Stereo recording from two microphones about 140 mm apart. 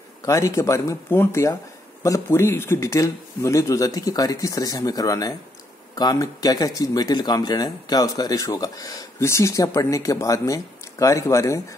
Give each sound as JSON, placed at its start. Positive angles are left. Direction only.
{"t": 0.2, "sound": "speech", "side_deg": 20}